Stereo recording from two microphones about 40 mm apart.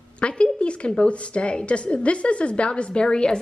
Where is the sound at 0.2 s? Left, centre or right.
Left.